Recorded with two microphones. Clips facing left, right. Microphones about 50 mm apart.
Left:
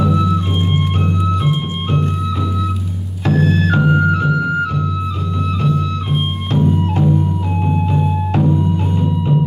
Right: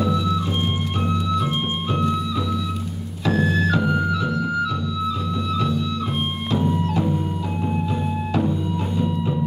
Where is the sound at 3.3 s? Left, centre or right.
Left.